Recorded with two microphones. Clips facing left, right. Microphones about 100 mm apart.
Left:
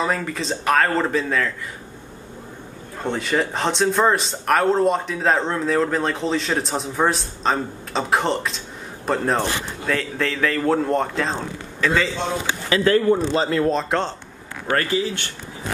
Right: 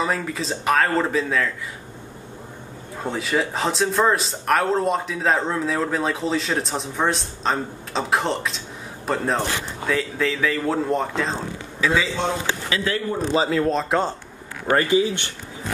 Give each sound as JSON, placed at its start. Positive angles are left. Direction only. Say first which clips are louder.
{"t": 0.0, "sound": "speech", "louder": "left 1 dB", "side_deg": 0}
{"t": 3.0, "sound": "speech", "louder": "left 1 dB", "side_deg": 0}
{"t": 12.6, "sound": "speech", "louder": "left 10 dB", "side_deg": 45}
{"t": 13.3, "sound": "speech", "louder": "even", "side_deg": 0}
{"t": 14.7, "sound": "speech", "louder": "right 3 dB", "side_deg": -15}